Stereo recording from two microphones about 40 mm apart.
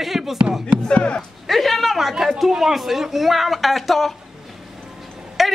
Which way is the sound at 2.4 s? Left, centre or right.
Centre.